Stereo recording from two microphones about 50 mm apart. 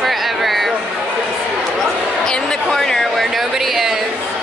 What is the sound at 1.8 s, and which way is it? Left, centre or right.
Speech, centre.